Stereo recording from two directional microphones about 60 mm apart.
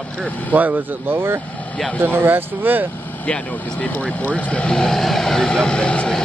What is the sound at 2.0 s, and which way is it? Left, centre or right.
Speech, right.